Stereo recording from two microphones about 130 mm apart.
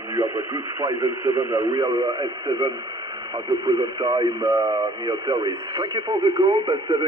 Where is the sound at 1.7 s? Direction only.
35° right (ahead or behind).